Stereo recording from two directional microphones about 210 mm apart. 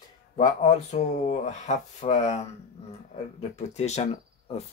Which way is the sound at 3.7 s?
30° left (ahead or behind).